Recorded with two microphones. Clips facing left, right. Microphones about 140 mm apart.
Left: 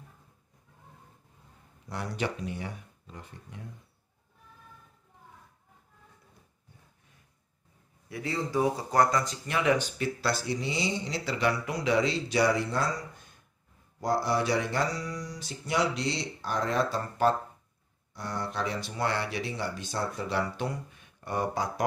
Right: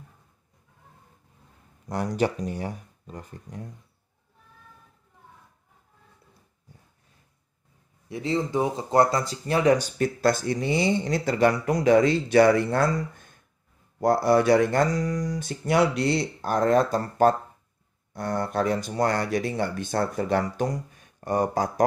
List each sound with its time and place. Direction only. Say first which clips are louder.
1.9 s speech: right 8 dB; 45° right (ahead or behind)
8.1 s speech: right 5 dB; 25° right (ahead or behind); by 21.8 s 45° right (ahead or behind)